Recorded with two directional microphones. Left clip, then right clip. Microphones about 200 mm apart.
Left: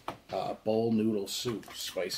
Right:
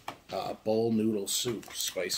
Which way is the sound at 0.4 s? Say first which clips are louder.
Right 1 dB; 15° right (ahead or behind).